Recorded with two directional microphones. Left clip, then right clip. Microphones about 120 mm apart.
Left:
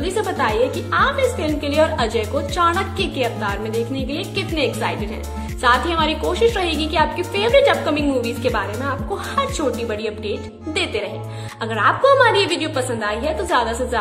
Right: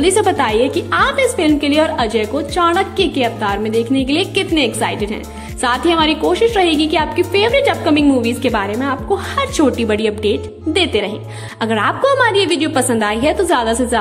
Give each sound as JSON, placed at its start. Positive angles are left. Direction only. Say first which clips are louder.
{"t": 0.2, "sound": "speech", "louder": "right 5 dB", "side_deg": -30}
{"t": 1.6, "sound": "a woman's voice", "louder": "right 3 dB", "side_deg": -30}
{"t": 11.6, "sound": "a woman's voice", "louder": "right 1 dB", "side_deg": -50}
{"t": 13.5, "sound": "speech", "louder": "right 4 dB", "side_deg": -40}